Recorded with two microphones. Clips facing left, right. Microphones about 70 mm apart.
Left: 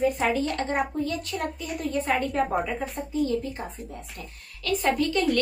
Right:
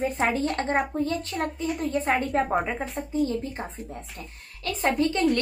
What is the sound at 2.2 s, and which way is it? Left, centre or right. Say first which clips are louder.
Speech: right 1 dB; right.